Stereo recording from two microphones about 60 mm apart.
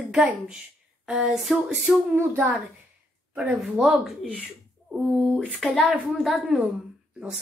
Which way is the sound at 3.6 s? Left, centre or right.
Centre.